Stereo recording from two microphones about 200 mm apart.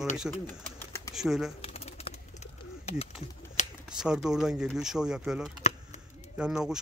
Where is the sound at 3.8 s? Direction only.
5° right (ahead or behind).